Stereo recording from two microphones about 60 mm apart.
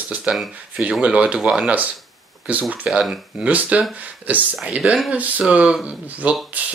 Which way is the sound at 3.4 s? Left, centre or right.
Right.